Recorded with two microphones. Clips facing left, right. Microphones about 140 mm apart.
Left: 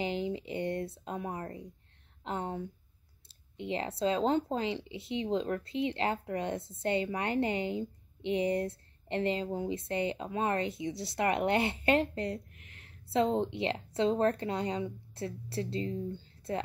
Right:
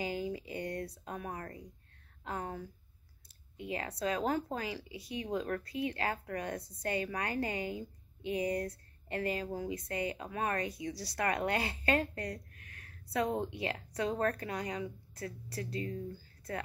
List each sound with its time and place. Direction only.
0.0 s speech: 25° left (ahead or behind)